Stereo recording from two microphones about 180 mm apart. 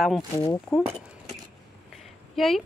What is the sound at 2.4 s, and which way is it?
Speech, centre (ahead or behind).